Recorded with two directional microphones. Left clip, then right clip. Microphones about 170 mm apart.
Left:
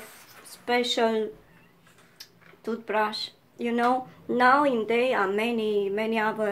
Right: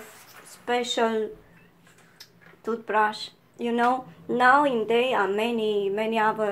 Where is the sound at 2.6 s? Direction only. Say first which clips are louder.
Right 3 dB; 10° left (ahead or behind).